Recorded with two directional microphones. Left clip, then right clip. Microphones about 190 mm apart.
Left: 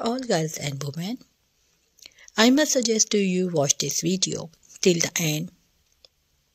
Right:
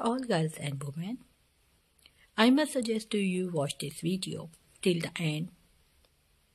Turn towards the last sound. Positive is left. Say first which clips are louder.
# left 13 dB
turn(degrees=20)  # may be behind; listen again after turning